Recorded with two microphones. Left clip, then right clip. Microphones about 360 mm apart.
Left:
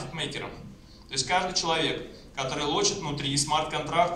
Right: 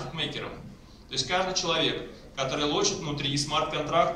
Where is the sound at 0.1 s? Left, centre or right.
Centre.